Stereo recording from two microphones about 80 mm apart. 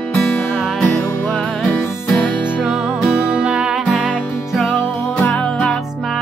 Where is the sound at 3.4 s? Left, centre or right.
Centre.